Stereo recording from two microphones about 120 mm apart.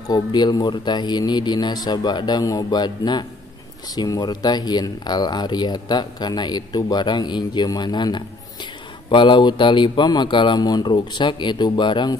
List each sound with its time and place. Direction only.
0.1 s speech: 35° left (ahead or behind)